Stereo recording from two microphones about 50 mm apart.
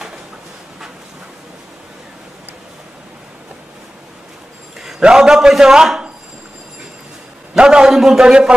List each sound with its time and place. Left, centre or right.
5.0 s a man's voice: centre
7.5 s a man's voice: centre